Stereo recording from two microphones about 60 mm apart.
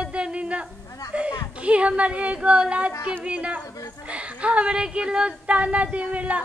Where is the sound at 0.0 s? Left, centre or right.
Centre.